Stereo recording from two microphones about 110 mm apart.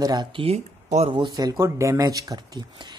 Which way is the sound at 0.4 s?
80° right.